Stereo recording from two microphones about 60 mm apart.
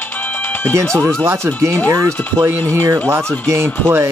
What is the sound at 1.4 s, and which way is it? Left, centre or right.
Speech, right.